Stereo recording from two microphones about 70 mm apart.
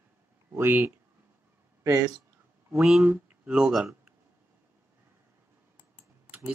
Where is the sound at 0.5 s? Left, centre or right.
Right.